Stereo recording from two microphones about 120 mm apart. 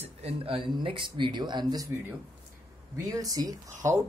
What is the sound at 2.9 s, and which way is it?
Speech, 30° right (ahead or behind).